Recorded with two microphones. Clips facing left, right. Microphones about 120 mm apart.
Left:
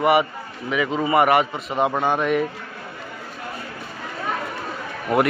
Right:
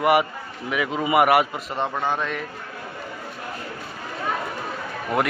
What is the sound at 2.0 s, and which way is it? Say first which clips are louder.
Speech: left 5 dB; 15° left (ahead or behind).